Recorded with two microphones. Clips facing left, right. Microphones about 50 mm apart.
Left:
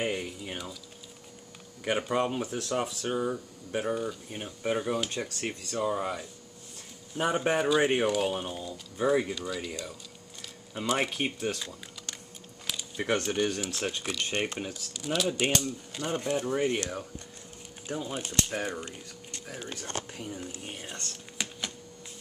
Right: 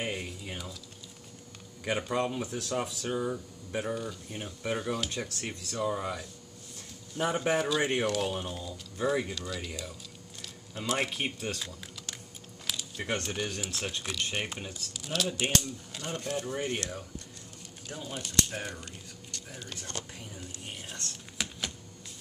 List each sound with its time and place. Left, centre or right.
2.0 s speech: centre
12.6 s a sound: centre
13.3 s speech: centre; by 20.4 s left
20.7 s speech: centre
21.4 s typing: centre